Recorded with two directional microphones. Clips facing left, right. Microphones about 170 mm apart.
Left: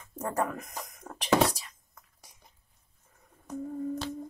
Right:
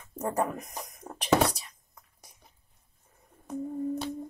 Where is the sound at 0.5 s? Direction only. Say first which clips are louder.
Right 1 dB; 20° right (ahead or behind).